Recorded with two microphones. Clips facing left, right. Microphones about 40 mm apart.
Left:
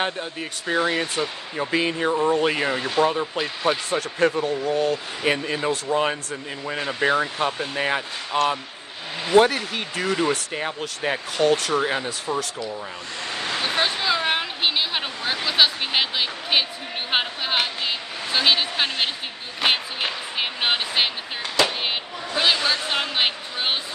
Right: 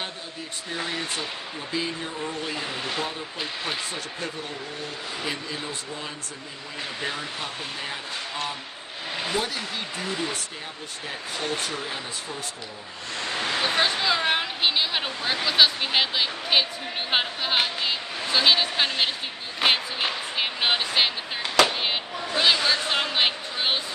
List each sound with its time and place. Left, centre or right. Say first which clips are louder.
0.0 s speech: left 8 dB; left
6.8 s speech: left 10 dB; left
9.8 s speech: left 5 dB; left
13.7 s a sound: left 2 dB; centre
15.4 s speech: even; centre
22.4 s speech: left 1 dB; centre